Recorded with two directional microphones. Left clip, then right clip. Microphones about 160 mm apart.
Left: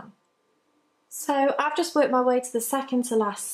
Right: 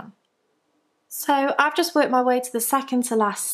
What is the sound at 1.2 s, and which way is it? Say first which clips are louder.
Speech: right 3 dB; 35° right (ahead or behind).